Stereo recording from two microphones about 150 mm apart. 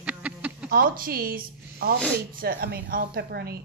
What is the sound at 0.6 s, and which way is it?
A woman's voice, 80° right.